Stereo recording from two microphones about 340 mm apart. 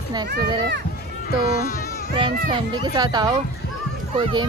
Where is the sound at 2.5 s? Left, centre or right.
Centre.